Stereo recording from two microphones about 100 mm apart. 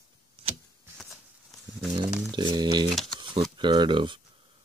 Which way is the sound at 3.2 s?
50° right (ahead or behind).